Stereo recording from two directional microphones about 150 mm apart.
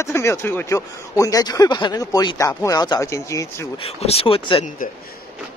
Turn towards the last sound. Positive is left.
turn(degrees=35)  # may be behind; listen again after turning